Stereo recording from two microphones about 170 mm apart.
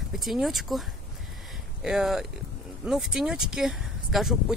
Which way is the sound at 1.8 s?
5° right (ahead or behind).